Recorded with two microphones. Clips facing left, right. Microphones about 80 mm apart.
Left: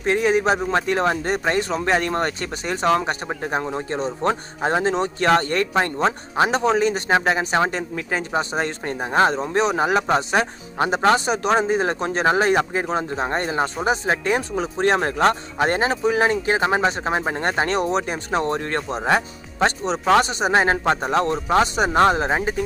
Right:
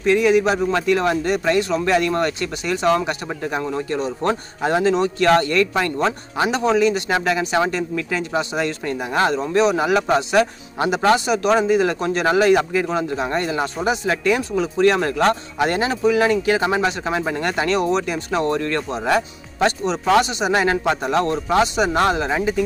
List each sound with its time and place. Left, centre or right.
0.0 s speech: left